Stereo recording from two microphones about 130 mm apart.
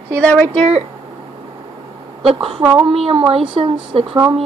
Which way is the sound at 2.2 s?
45° right (ahead or behind).